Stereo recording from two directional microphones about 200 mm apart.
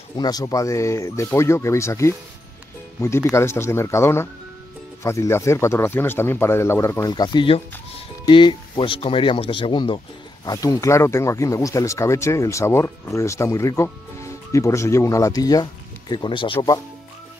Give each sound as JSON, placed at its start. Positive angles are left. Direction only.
{"t": 0.2, "sound": "speech", "side_deg": 20}